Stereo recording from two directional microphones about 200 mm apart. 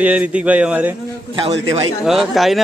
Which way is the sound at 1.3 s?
30° right (ahead or behind).